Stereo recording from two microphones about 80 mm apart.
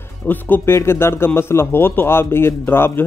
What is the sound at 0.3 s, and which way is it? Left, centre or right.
A man's voice, left.